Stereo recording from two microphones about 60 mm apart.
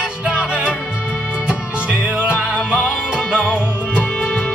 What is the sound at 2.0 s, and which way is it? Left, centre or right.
Music, right.